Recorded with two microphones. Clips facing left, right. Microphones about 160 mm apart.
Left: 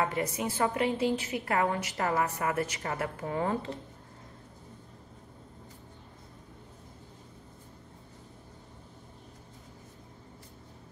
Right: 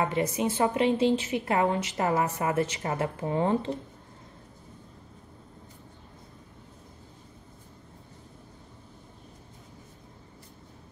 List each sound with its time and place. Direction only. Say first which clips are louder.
0.0 s a woman's voice: right 4 dB; 20° right (ahead or behind)